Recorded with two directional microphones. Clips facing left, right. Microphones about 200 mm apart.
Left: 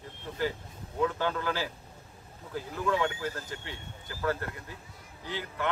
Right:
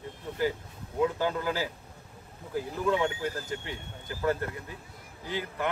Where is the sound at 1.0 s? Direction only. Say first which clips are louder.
Right 2 dB; 15° right (ahead or behind).